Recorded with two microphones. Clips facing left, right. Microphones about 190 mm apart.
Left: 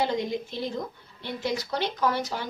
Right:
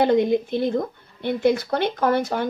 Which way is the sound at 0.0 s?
55° right (ahead or behind).